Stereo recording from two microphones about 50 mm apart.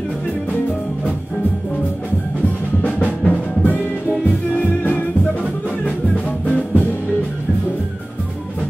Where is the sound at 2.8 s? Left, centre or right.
Left.